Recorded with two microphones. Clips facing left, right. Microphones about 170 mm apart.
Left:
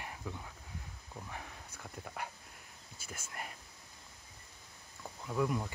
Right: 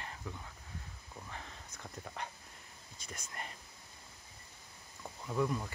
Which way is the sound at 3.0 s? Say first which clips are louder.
Left 1 dB; 5° left (ahead or behind).